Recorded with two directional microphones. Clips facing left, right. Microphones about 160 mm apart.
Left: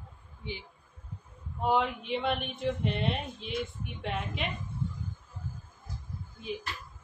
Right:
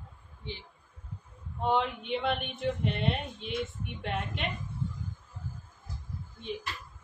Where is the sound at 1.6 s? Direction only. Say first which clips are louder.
Left 1 dB; 5° left (ahead or behind).